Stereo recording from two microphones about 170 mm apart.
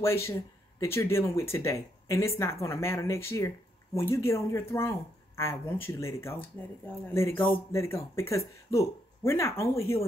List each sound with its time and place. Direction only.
0.0 s speech: 15° left (ahead or behind)